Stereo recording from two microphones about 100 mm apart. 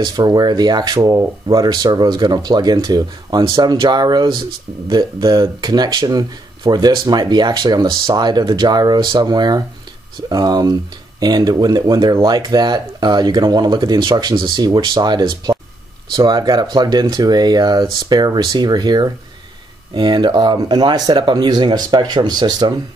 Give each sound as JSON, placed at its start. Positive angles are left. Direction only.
{"t": 0.0, "sound": "speech", "side_deg": -40}